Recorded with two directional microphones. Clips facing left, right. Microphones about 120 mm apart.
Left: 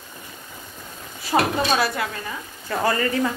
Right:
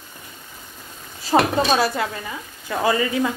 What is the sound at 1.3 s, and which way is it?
Speech, 25° right (ahead or behind).